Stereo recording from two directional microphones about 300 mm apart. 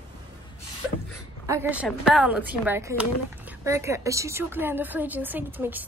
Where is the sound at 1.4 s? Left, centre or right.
Centre.